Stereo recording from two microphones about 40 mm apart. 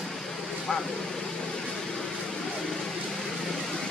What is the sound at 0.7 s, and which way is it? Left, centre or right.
Vehicle, centre.